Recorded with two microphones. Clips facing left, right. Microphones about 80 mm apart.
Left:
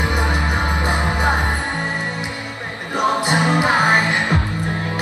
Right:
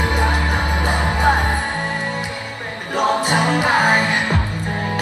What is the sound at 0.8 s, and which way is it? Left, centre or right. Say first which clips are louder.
Music: right 4 dB; centre.